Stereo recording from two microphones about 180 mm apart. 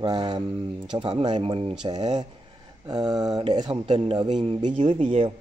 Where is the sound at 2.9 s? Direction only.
20° right (ahead or behind).